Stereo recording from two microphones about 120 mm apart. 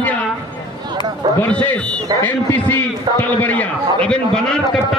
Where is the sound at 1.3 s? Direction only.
15° left (ahead or behind).